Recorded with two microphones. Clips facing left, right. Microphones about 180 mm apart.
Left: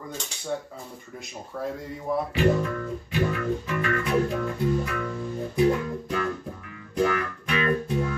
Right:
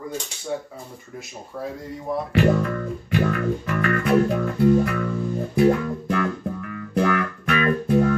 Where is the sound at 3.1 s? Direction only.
60° right (ahead or behind).